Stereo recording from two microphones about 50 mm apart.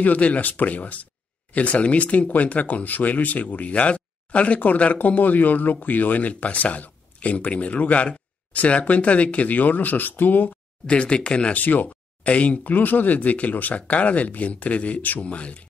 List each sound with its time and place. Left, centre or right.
0.0 s speech: left
10.9 s speech: left
11.5 s speech: left